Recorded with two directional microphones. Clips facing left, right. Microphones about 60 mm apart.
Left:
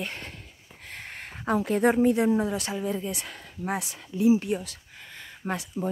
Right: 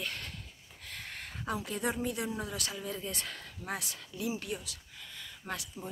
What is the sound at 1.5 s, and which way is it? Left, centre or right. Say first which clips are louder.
Speech: left 12 dB; left.